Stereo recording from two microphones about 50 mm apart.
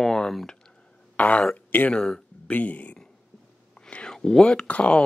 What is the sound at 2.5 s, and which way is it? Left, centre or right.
Speech, left.